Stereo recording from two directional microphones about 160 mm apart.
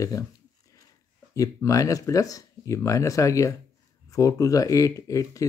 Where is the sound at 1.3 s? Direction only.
20° left (ahead or behind).